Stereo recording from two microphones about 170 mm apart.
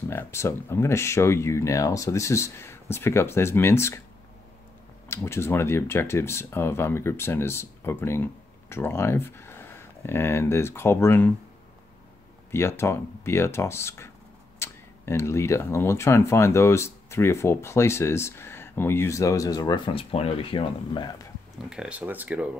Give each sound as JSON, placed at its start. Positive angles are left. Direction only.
{"t": 0.1, "sound": "speech", "side_deg": 15}
{"t": 5.0, "sound": "speech", "side_deg": 15}
{"t": 12.4, "sound": "speech", "side_deg": 15}
{"t": 21.6, "sound": "speech", "side_deg": -5}